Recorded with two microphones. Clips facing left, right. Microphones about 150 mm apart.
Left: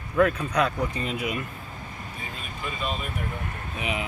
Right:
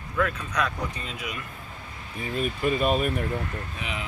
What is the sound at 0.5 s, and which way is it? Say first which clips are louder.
Speech: left 2 dB; 30° left (ahead or behind).